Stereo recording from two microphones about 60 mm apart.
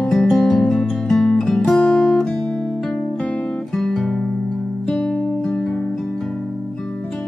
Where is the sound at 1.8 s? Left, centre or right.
Centre.